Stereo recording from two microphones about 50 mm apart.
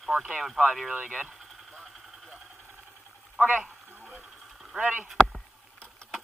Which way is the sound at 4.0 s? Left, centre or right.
Centre.